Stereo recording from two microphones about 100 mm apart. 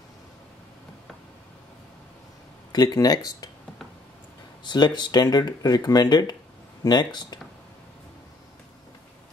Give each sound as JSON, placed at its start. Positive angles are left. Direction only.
{"t": 2.7, "sound": "speech", "side_deg": 40}
{"t": 4.6, "sound": "speech", "side_deg": 45}